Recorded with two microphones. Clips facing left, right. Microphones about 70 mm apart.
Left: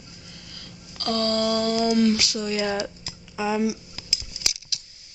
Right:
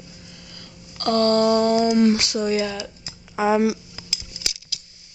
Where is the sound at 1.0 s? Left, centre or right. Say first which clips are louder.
Right 6 dB; right.